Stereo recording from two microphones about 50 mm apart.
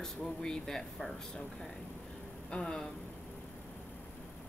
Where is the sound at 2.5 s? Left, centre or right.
Centre.